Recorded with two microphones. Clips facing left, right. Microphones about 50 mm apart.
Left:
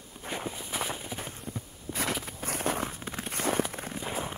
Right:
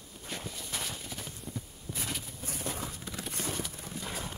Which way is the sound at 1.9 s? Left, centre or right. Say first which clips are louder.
Left 7 dB; left.